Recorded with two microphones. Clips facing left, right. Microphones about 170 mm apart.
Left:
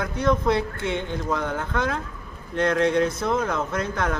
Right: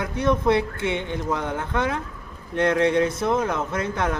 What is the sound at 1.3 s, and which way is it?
A man's voice, 20° right (ahead or behind).